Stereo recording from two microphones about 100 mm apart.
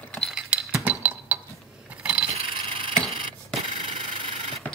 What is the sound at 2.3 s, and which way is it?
Vehicle, 65° right (ahead or behind).